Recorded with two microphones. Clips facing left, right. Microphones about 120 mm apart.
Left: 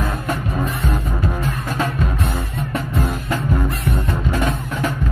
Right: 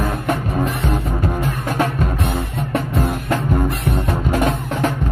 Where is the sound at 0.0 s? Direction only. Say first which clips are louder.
Right 3 dB; 60° right (ahead or behind).